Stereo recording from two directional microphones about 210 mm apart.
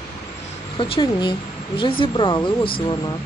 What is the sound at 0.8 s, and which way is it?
A woman's voice, 20° left (ahead or behind).